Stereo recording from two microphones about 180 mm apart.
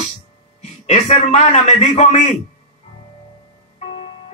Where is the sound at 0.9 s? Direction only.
40° left (ahead or behind).